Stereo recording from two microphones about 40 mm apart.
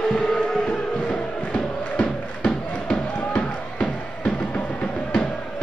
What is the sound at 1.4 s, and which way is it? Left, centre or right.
Crowd, left.